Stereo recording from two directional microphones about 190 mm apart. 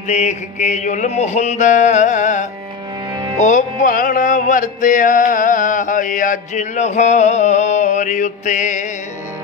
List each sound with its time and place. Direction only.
0.1 s music: 35° left (ahead or behind)